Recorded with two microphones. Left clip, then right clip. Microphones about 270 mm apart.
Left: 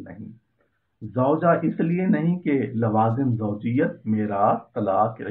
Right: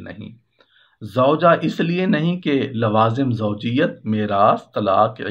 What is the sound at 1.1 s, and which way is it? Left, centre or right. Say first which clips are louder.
Speech: right 5 dB; right.